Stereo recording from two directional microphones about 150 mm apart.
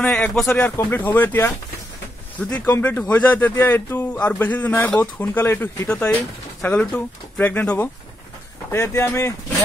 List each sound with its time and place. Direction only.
0.0 s speech: 5° left (ahead or behind)
0.6 s a man's voice: 15° left (ahead or behind)
2.6 s a man's voice: 15° left (ahead or behind)